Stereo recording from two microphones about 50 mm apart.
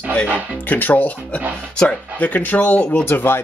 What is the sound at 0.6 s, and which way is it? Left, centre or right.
Speech, left.